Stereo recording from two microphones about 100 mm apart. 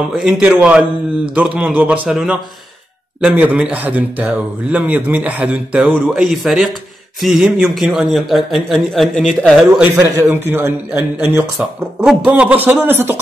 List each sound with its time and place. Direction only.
0.2 s a man's voice: 10° right (ahead or behind)
9.9 s a man's voice: 25° right (ahead or behind)